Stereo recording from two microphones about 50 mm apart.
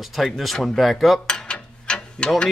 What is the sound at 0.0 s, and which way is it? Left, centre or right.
Speech, centre.